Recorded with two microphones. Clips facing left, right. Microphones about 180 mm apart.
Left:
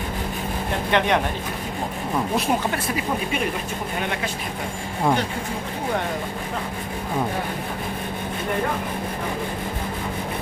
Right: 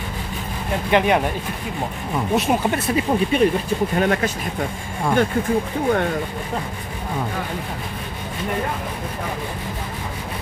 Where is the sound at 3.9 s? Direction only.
45° right (ahead or behind).